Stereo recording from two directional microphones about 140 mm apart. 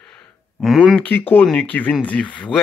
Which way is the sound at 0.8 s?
10° left (ahead or behind).